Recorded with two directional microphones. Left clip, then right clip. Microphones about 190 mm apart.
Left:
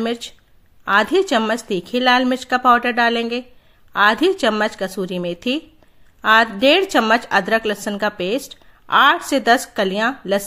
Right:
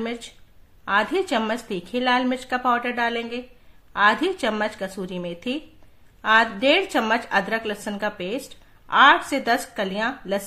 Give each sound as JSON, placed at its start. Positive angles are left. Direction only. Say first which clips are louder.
{"t": 0.0, "sound": "a woman's voice", "louder": "left 7 dB", "side_deg": 40}